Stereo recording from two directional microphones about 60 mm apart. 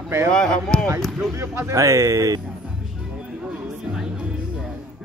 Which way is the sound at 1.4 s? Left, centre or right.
Right.